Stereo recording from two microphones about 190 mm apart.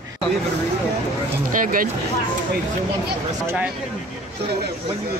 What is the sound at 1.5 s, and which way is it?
Speech, 45° right (ahead or behind).